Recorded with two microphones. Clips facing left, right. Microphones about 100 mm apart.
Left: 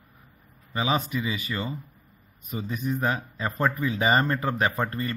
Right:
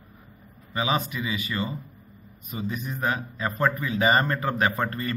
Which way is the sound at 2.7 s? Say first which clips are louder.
Left 2 dB; 25° left (ahead or behind).